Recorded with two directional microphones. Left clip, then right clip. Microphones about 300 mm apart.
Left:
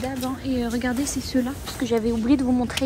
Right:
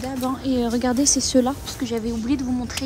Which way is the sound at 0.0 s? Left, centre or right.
Centre.